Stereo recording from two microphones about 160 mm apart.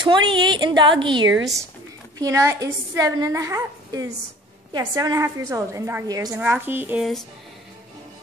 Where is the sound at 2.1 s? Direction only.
20° right (ahead or behind).